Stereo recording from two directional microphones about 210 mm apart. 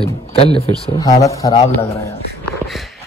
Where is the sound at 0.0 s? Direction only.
30° left (ahead or behind).